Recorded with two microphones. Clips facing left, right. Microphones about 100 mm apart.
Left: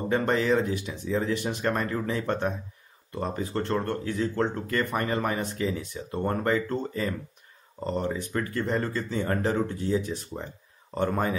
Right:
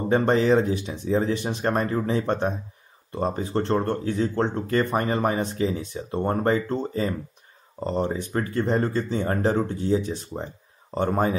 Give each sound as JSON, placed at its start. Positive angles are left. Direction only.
{"t": 0.1, "sound": "speech", "side_deg": -25}